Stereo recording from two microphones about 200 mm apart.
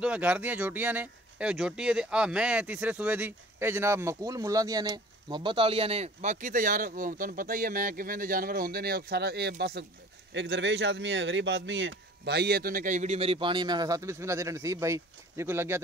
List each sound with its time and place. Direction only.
0.0 s speech: 5° right (ahead or behind)